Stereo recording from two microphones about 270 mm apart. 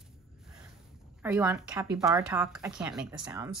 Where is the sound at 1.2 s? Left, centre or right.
Centre.